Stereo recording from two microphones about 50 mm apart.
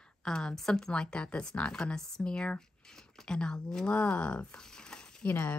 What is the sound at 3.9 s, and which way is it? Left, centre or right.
Speech, left.